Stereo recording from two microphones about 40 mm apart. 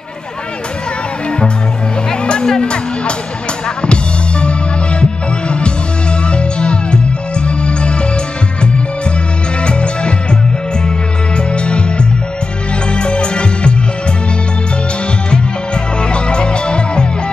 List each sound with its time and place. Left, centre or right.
2.0 s music: centre
6.2 s music: left
9.6 s music: left
11.3 s music: left
15.2 s music: left